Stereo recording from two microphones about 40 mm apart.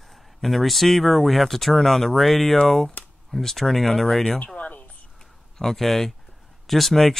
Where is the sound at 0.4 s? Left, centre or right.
Centre.